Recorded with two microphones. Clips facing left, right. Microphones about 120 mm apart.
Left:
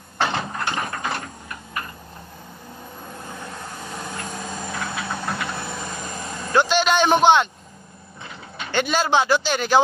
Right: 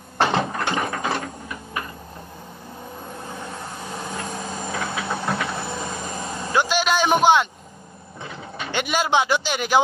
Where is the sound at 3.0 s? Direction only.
20° right (ahead or behind).